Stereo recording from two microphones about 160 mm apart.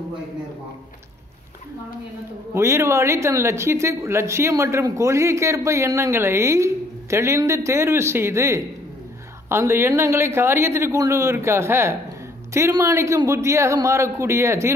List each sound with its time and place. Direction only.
2.5 s speech: 15° right (ahead or behind)